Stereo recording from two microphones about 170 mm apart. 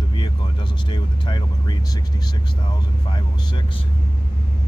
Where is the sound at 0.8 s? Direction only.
30° left (ahead or behind).